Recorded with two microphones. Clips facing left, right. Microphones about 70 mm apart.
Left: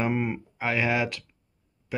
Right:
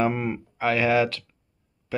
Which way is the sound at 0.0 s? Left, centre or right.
Centre.